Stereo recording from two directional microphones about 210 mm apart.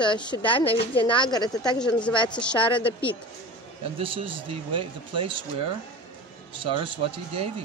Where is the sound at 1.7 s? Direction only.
5° left (ahead or behind).